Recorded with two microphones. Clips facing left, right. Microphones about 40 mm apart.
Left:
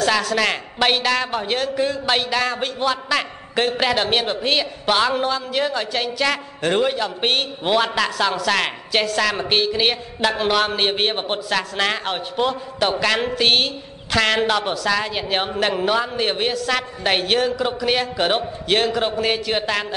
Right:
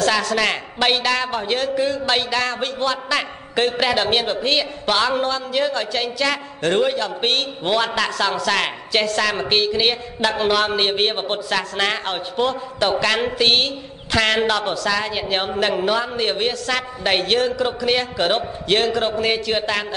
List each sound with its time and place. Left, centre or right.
0.0 s a man's voice: centre